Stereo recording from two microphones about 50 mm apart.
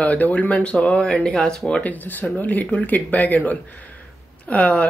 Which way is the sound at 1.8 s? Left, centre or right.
Left.